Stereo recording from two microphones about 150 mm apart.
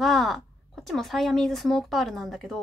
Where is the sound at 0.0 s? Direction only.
Centre (ahead or behind).